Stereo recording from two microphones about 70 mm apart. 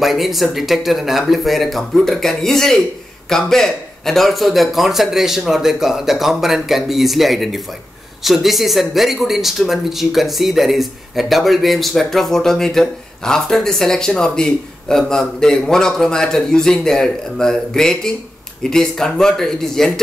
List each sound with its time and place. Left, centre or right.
0.0 s speech: centre